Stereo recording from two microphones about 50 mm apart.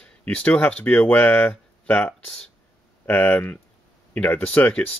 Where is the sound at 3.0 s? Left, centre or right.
Left.